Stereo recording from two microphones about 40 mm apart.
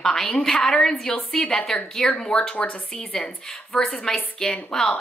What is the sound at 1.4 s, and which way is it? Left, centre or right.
Speech, left.